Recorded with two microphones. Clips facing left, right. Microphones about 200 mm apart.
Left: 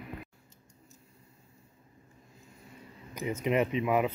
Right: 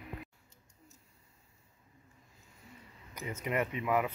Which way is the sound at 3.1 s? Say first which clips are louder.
Left 6 dB; 20° left (ahead or behind).